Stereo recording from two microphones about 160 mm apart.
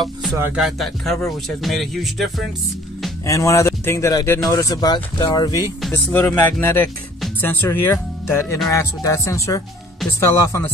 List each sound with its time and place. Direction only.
0.6 s music: centre (ahead or behind)
3.3 s speech: 20° left (ahead or behind)
5.8 s speech: 10° left (ahead or behind)